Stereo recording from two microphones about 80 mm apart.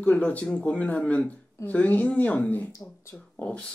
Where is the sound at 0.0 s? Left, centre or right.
Centre.